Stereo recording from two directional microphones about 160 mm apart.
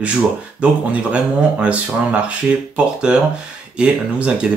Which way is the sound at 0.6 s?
10° right (ahead or behind).